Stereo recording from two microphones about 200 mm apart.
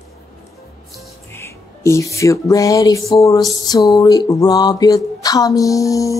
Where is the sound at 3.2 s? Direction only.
20° left (ahead or behind).